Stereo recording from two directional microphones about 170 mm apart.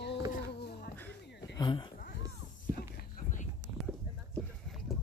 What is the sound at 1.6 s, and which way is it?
Speech, 25° left (ahead or behind).